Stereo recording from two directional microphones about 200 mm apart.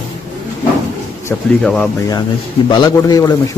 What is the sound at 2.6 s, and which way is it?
Speech, 20° left (ahead or behind).